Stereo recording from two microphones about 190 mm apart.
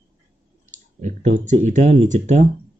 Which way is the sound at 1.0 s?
40° right (ahead or behind).